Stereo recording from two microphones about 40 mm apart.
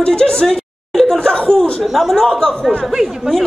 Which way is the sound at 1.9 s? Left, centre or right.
Centre.